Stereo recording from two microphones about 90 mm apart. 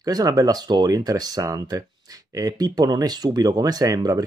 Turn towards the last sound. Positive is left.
turn(degrees=-40)  # may be behind; listen again after turning